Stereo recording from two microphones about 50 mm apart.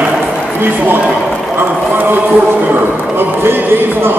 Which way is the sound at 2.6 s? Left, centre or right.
Right.